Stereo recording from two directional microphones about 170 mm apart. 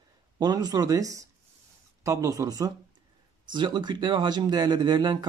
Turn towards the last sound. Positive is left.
turn(degrees=-25)  # may be behind; listen again after turning